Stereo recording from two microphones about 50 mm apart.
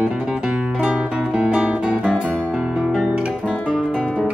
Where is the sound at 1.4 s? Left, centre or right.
Right.